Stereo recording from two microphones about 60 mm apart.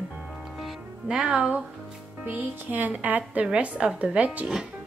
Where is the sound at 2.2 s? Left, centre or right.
Right.